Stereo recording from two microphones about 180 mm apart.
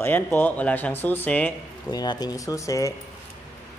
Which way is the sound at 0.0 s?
10° left (ahead or behind).